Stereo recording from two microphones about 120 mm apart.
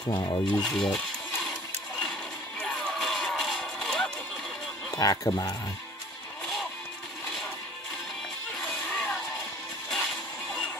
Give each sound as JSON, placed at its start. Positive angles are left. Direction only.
{"t": 0.1, "sound": "speech", "side_deg": 35}
{"t": 0.5, "sound": "speech", "side_deg": 5}
{"t": 2.6, "sound": "run", "side_deg": 5}
{"t": 4.9, "sound": "speech", "side_deg": 30}
{"t": 8.5, "sound": "music", "side_deg": 10}